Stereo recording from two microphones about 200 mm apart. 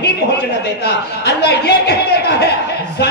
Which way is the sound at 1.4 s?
55° left (ahead or behind).